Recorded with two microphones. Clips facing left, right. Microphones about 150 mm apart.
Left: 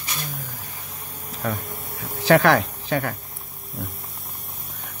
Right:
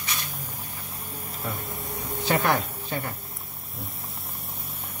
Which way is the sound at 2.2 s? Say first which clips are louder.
Left 8 dB; 90° left.